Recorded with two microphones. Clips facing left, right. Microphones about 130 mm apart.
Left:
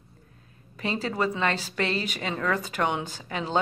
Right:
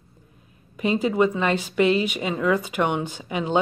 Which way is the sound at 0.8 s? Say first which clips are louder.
Right 7 dB; 15° right (ahead or behind).